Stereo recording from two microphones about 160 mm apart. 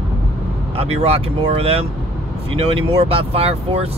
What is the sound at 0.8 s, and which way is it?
Speech, 40° right (ahead or behind).